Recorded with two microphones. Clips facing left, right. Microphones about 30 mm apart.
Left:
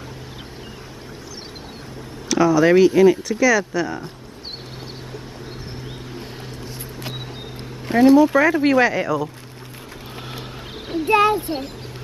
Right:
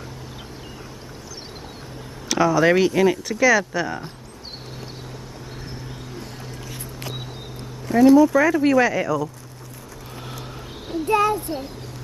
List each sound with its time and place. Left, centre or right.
2.2 s speech: centre
7.9 s speech: left
10.9 s a child's voice: left